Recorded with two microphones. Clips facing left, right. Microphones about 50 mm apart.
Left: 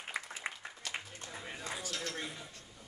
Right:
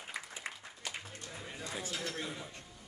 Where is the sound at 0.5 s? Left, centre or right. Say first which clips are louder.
Left 2 dB; centre.